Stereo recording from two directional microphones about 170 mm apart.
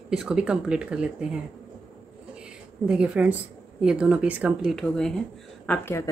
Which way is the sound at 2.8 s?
5° right (ahead or behind).